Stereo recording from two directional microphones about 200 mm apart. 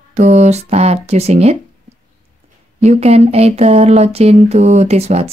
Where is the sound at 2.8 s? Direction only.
35° right (ahead or behind).